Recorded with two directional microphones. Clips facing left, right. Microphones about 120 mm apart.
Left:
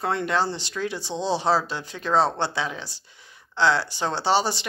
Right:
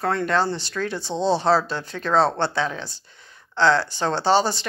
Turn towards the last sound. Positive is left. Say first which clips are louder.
# right 3 dB
turn(degrees=15)  # may be behind; listen again after turning